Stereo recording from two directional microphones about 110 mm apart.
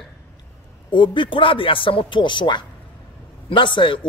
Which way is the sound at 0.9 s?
45° left (ahead or behind).